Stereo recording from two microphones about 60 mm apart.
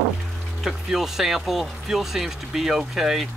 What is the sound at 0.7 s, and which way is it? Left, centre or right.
Speech, centre.